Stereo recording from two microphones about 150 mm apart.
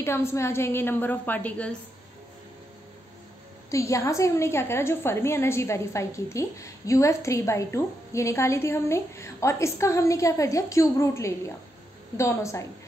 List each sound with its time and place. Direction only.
0.0 s a woman's voice: 15° left (ahead or behind)
3.7 s a woman's voice: 20° left (ahead or behind)